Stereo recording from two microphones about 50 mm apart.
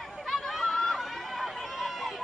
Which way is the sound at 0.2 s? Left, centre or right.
Centre.